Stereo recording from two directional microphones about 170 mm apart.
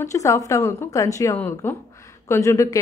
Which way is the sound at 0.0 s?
15° left (ahead or behind).